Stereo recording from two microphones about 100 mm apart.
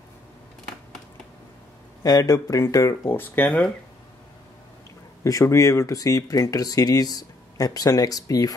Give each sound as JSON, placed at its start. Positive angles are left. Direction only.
{"t": 2.0, "sound": "speech", "side_deg": 35}
{"t": 5.2, "sound": "speech", "side_deg": 30}